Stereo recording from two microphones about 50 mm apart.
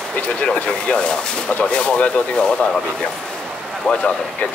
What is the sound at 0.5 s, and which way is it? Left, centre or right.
Speech, left.